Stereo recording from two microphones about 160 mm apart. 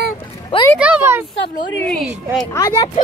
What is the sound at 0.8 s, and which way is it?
Speech, 10° right (ahead or behind).